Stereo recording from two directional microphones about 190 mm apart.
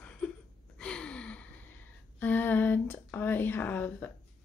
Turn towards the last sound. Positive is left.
turn(degrees=10)  # may be behind; listen again after turning